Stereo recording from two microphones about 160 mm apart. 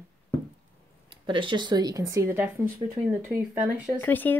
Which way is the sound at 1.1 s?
30° right (ahead or behind).